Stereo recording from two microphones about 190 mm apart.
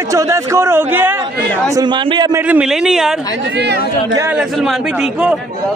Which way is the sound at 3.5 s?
65° right (ahead or behind).